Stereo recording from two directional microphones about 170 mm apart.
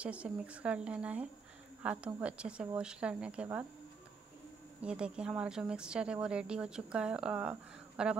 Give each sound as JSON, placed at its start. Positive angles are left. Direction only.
{"t": 0.0, "sound": "speech", "side_deg": -5}
{"t": 4.8, "sound": "speech", "side_deg": -5}